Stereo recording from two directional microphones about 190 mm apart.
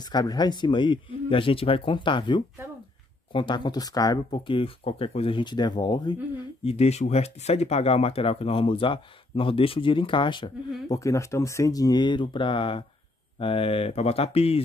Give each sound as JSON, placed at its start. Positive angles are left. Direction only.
{"t": 0.1, "sound": "speech", "side_deg": 20}